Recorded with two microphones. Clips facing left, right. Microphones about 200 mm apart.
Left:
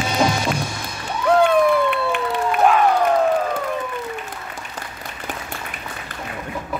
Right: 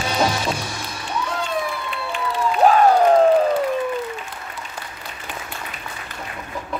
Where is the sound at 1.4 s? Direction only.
60° left (ahead or behind).